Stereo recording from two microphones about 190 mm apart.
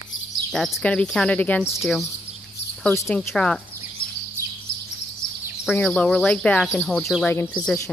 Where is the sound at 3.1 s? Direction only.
5° left (ahead or behind).